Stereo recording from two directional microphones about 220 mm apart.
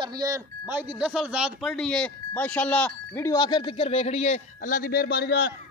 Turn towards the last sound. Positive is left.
turn(degrees=45)  # may be behind; listen again after turning